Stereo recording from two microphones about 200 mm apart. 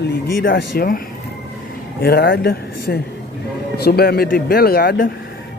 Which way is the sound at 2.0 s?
50° left (ahead or behind).